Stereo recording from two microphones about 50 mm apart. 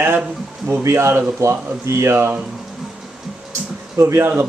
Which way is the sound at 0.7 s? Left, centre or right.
Right.